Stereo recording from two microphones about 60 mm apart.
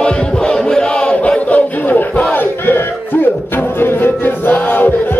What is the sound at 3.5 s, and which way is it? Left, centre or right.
Music, left.